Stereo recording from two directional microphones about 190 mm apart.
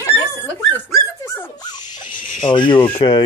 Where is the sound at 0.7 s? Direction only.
15° left (ahead or behind).